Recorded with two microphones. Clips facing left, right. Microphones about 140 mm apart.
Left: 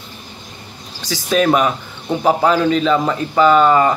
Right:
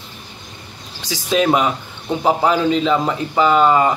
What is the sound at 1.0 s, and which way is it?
Speech, 20° right (ahead or behind).